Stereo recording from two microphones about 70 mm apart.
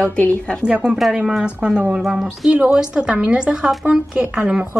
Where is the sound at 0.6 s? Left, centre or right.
Centre.